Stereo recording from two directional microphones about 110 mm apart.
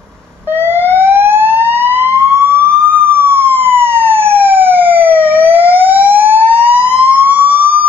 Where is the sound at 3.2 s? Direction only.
20° right (ahead or behind).